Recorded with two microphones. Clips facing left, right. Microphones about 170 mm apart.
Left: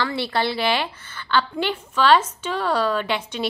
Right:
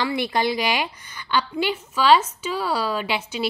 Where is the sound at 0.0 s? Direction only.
15° right (ahead or behind).